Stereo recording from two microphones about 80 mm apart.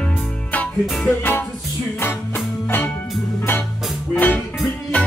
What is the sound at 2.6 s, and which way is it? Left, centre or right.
Music, left.